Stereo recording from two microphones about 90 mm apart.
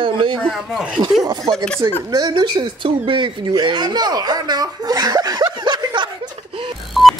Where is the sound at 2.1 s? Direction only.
55° right (ahead or behind); by 3.5 s 70° right (ahead or behind).